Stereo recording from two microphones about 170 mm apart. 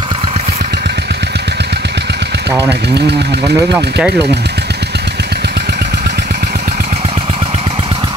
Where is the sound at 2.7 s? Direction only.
85° right.